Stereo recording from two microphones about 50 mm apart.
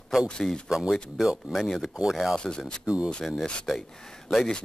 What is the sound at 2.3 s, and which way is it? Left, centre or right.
Speech, centre.